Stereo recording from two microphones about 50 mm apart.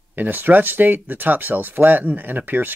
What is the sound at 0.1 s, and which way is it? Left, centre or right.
Speech, right.